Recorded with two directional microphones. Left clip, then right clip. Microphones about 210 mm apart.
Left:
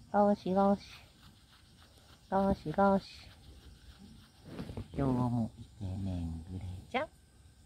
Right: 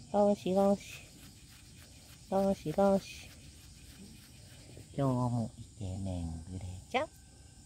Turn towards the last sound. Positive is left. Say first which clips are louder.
# right 2 dB
turn(degrees=-10)  # may be behind; listen again after turning